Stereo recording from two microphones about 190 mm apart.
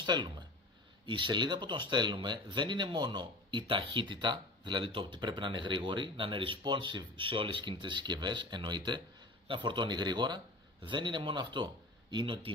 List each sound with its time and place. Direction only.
0.0 s a man's voice: 25° right (ahead or behind)